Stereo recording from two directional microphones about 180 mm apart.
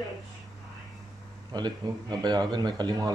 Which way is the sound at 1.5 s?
25° right (ahead or behind).